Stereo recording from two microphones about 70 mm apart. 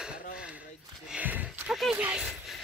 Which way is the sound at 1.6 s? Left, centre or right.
Centre.